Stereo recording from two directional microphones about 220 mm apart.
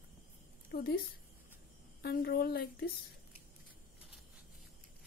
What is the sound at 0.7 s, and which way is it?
A woman's voice, 45° left (ahead or behind).